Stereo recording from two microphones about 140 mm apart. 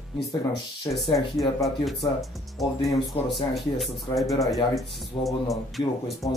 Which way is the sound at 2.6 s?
Centre (ahead or behind).